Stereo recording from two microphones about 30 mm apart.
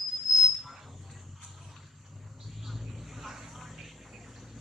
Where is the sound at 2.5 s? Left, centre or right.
Centre.